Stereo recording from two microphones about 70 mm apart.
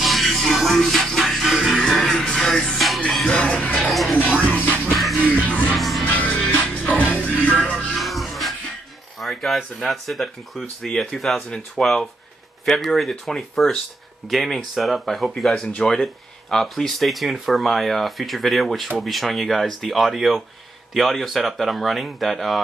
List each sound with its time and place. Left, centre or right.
0.0 s music: centre
3.3 s music: centre
3.9 s music: centre
4.2 s music: left
5.8 s music: centre
6.0 s music: centre
7.7 s music: centre
9.2 s speech: centre